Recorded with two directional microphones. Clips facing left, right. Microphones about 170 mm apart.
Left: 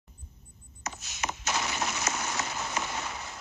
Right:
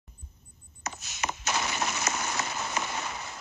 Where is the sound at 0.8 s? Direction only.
55° right (ahead or behind).